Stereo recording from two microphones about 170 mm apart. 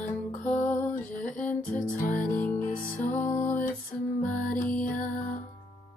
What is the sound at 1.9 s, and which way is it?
Music, 50° left (ahead or behind).